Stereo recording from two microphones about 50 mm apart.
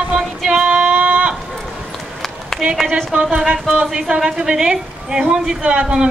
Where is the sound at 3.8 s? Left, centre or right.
Centre.